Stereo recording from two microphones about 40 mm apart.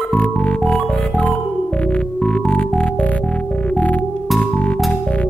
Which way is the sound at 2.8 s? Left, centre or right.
Left.